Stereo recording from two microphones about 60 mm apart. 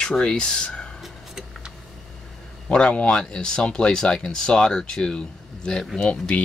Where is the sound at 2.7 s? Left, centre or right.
Centre.